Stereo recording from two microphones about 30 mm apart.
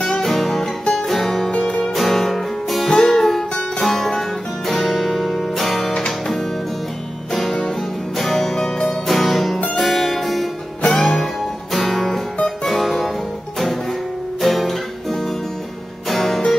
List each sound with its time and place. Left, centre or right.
0.2 s music: centre
3.8 s music: centre
5.9 s music: left
7.3 s music: centre
14.4 s guitar: centre
16.1 s music: centre